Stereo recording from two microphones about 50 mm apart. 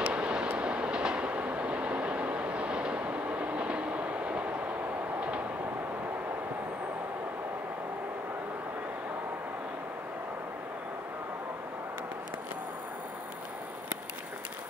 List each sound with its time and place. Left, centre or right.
0.0 s train: right